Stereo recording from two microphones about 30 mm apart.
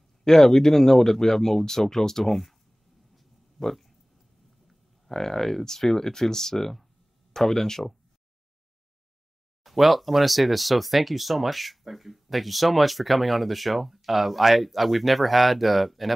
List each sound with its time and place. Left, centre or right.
0.2 s speech: centre
3.6 s speech: centre
9.6 s speech: centre